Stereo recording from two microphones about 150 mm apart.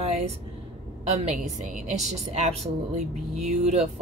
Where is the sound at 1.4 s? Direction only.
50° right (ahead or behind).